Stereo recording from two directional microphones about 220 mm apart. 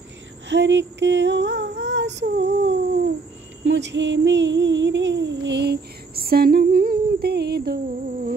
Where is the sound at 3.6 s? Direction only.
55° right (ahead or behind).